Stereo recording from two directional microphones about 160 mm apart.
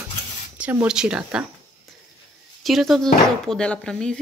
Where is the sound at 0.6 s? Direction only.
10° right (ahead or behind).